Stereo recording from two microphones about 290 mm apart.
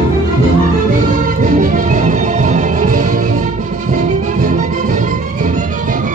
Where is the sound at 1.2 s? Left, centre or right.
Right.